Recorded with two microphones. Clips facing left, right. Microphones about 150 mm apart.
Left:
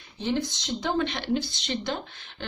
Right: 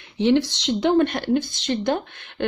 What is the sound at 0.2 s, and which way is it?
Speech, 70° right (ahead or behind).